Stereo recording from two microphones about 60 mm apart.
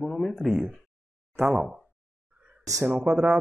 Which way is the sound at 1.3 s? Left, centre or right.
Centre.